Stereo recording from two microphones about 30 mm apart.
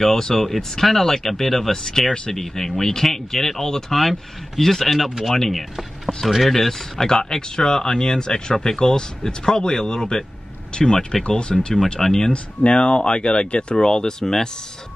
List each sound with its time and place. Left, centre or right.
0.0 s speech: centre
1.8 s speech: left
2.3 s speech: centre
5.5 s speech: centre
7.1 s speech: left